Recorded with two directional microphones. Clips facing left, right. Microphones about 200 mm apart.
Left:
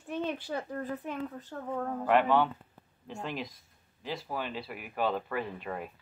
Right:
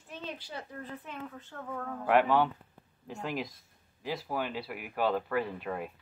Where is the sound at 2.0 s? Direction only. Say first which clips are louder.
Even; 10° right (ahead or behind).